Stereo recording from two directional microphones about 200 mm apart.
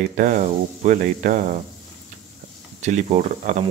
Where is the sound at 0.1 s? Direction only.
40° right (ahead or behind).